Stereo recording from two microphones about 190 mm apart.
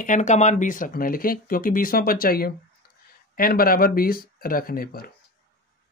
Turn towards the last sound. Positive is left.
turn(degrees=50)  # may be behind; listen again after turning